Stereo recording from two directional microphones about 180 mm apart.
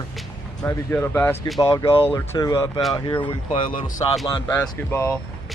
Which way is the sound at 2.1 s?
20° left (ahead or behind).